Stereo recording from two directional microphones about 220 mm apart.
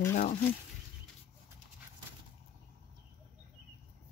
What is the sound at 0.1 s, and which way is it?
Speech, 35° left (ahead or behind).